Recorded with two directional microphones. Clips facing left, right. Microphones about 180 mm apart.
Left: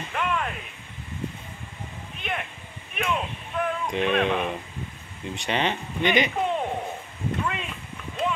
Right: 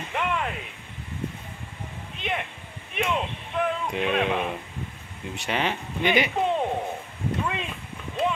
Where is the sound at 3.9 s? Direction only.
5° right (ahead or behind).